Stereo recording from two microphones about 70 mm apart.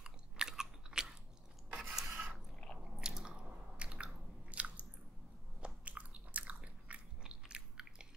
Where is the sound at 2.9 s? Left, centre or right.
Centre.